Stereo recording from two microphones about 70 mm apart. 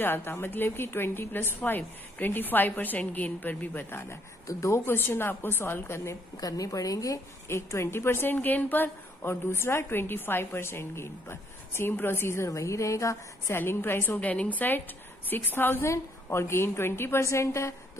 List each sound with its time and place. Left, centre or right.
0.0 s a woman's voice: left
4.5 s a woman's voice: left
6.3 s a woman's voice: left
7.4 s a woman's voice: left
13.6 s a woman's voice: left
14.2 s a woman's voice: centre; by 17.7 s left